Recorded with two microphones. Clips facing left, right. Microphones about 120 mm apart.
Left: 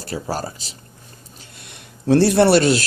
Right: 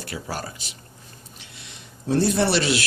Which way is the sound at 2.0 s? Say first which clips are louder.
Left 7 dB; 70° left (ahead or behind).